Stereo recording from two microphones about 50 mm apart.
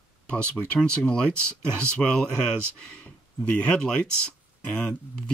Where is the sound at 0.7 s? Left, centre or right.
Centre.